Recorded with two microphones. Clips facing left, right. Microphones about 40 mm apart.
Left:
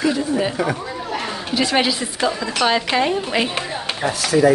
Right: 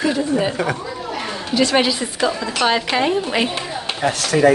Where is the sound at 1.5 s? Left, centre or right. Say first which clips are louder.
Right 2 dB; centre.